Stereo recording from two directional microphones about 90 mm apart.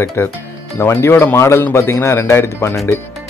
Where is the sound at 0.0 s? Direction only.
25° left (ahead or behind).